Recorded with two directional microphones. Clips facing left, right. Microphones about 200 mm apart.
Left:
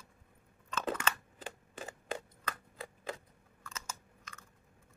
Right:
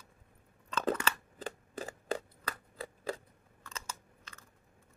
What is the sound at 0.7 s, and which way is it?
Chewing, 35° right (ahead or behind).